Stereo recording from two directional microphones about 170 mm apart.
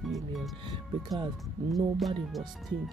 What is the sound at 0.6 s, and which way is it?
Speech, 25° right (ahead or behind).